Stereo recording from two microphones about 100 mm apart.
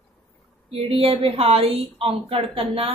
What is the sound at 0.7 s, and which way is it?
Speech, 70° right (ahead or behind).